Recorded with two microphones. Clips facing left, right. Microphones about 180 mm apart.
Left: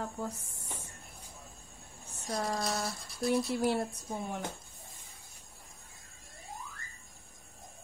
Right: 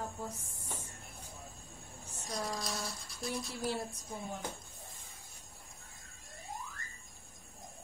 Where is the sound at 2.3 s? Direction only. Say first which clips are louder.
Left 5 dB; 60° left (ahead or behind).